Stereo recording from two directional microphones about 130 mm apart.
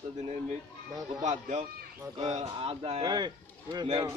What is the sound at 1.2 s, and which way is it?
Speech, 65° right (ahead or behind).